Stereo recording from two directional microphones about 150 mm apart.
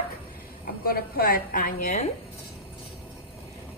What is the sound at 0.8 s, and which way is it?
Speech, 85° left.